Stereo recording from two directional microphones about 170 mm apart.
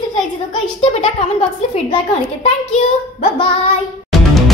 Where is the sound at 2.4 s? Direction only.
35° left (ahead or behind).